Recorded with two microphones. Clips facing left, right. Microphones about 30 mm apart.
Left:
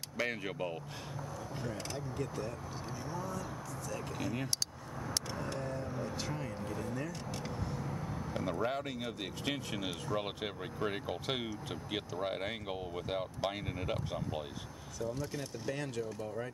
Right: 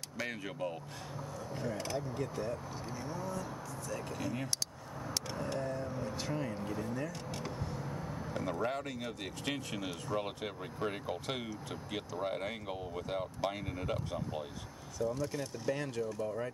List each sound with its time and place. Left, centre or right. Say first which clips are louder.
0.2 s speech: left 3 dB; centre
1.6 s speech: right 5 dB; centre
5.1 s vehicle: right 2 dB; centre
8.3 s speech: even; centre
15.0 s speech: right 3 dB; centre